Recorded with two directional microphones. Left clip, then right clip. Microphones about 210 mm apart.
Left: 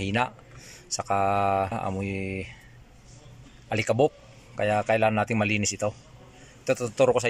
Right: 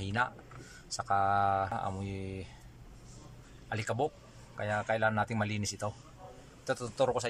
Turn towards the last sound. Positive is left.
turn(degrees=10)  # may be behind; listen again after turning